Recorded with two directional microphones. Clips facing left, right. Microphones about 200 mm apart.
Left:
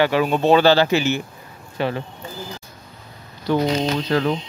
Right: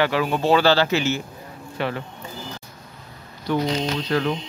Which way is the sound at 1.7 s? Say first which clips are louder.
Left 3 dB; 30° left (ahead or behind).